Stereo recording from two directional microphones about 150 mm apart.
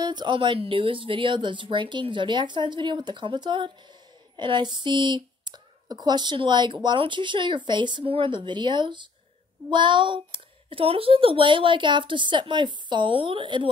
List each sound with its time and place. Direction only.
0.0 s speech: 30° right (ahead or behind)